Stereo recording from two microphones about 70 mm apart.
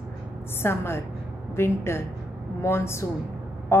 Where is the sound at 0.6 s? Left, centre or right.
Left.